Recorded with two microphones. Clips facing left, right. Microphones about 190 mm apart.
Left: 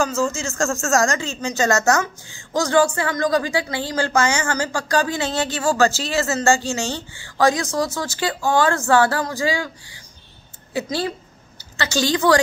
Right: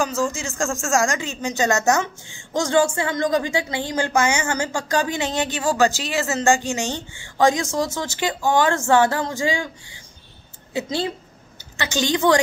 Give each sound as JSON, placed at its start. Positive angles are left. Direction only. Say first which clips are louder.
{"t": 0.0, "sound": "a woman's voice", "louder": "left 2 dB", "side_deg": -15}
{"t": 10.7, "sound": "a woman's voice", "louder": "left 1 dB", "side_deg": -20}